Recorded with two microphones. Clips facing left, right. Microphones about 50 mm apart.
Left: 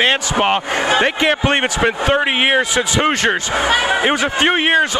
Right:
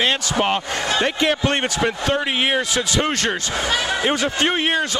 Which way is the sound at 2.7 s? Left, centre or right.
Left.